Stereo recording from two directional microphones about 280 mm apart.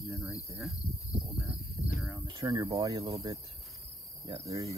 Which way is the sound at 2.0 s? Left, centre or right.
Centre.